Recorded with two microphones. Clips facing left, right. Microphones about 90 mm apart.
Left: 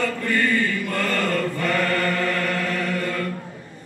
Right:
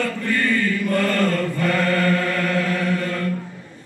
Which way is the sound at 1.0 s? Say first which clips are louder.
Right 3 dB; 15° left (ahead or behind).